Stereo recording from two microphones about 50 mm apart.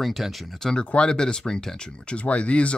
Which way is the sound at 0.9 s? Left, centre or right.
Centre.